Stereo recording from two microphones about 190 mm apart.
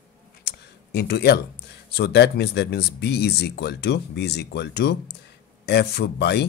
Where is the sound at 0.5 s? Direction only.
60° left (ahead or behind).